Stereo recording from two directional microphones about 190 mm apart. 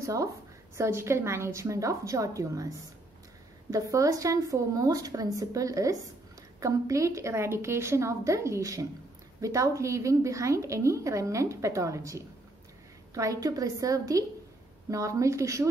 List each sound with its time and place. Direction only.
0.0 s a woman's voice: 15° right (ahead or behind)
3.7 s a woman's voice: 15° right (ahead or behind)